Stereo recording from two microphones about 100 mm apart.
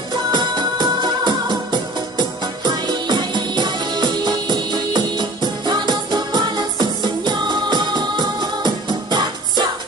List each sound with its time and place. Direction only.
0.1 s music: 45° right (ahead or behind)